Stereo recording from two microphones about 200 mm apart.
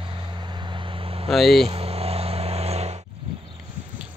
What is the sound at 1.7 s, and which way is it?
Vehicle, 30° right (ahead or behind).